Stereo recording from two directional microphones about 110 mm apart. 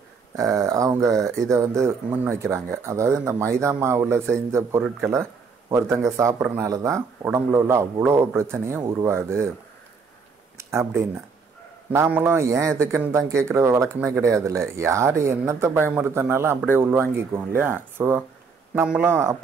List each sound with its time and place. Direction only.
0.4 s speech: 30° right (ahead or behind)
10.6 s a man's voice: 25° right (ahead or behind)
12.4 s speech: 25° right (ahead or behind)
18.9 s a man's voice: 10° right (ahead or behind)